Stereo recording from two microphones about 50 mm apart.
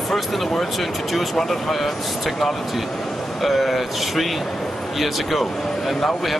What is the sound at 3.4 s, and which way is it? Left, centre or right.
Speech, centre.